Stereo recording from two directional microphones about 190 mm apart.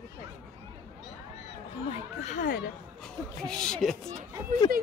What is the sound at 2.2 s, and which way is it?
Speech, 45° left (ahead or behind).